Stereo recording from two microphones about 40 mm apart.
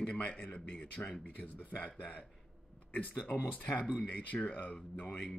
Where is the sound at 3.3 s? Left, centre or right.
Left.